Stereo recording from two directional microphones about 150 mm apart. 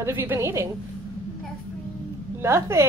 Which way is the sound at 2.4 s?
15° right (ahead or behind).